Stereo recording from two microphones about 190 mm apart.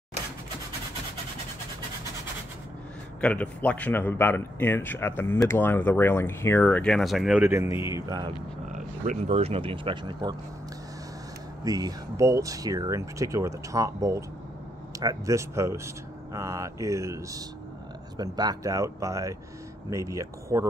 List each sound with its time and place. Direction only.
3.2 s speech: 5° left (ahead or behind)
7.4 s speech: 15° right (ahead or behind)
8.7 s speech: 40° right (ahead or behind)
11.6 s speech: 20° right (ahead or behind)